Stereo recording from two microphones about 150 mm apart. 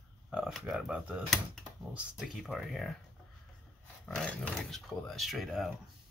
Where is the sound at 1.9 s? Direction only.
5° right (ahead or behind).